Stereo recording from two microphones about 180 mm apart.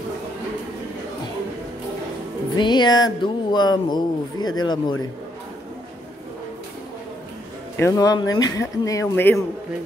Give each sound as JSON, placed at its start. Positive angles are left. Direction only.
{"t": 2.5, "sound": "speech", "side_deg": 25}
{"t": 7.7, "sound": "speech", "side_deg": 15}